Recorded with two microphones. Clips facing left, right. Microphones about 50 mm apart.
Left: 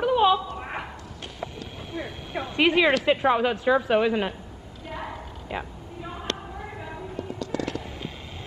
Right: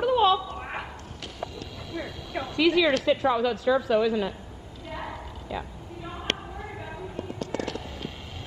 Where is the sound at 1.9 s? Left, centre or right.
Left.